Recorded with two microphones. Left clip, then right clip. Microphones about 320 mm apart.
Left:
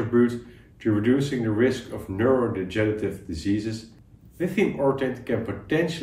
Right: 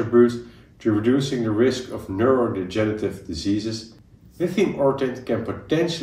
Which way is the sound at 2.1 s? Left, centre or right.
Centre.